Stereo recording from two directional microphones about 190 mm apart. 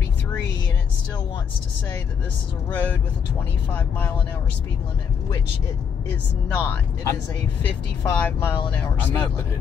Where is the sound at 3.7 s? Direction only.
10° left (ahead or behind).